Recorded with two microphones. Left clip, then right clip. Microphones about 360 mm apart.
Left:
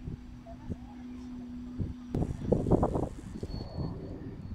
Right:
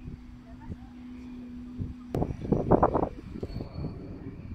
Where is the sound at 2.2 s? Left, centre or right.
Right.